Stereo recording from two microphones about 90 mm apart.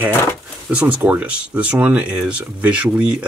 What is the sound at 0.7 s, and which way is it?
Speech, 15° right (ahead or behind).